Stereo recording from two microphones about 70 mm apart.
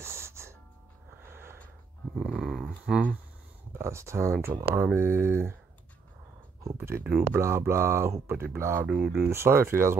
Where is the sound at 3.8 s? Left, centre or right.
Right.